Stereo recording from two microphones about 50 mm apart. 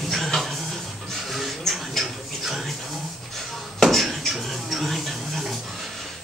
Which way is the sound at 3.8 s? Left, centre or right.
Centre.